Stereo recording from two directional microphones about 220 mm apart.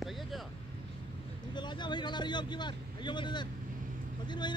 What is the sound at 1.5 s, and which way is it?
Speech, 20° left (ahead or behind).